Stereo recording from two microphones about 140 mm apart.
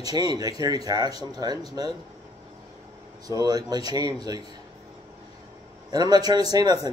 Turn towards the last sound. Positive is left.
turn(degrees=-30)  # may be behind; listen again after turning